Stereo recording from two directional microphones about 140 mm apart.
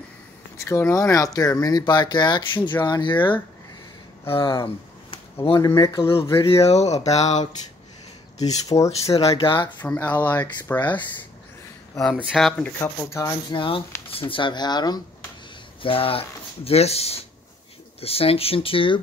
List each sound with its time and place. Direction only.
0.7 s speech: 20° left (ahead or behind); by 4.6 s 40° left (ahead or behind)
5.1 s a sound: 40° left (ahead or behind)
5.6 s speech: 20° left (ahead or behind)
6.4 s speech: 45° left (ahead or behind)
8.7 s speech: 20° left (ahead or behind)
9.2 s speech: 40° left (ahead or behind)
9.8 s speech: 10° left (ahead or behind)
12.3 s speech: centre (ahead or behind)
13.2 s speech: 35° left (ahead or behind)
15.8 s speech: 40° left (ahead or behind)